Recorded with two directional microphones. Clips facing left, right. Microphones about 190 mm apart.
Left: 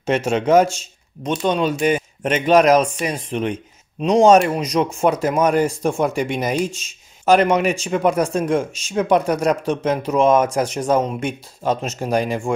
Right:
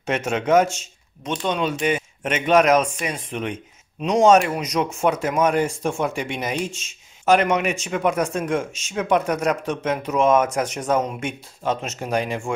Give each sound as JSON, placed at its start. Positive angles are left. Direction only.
{"t": 0.0, "sound": "speech", "side_deg": 30}